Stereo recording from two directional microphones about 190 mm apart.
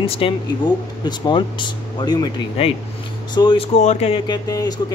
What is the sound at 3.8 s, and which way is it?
Speech, 35° left (ahead or behind).